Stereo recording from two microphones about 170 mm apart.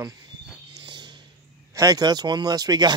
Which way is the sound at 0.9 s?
25° right (ahead or behind).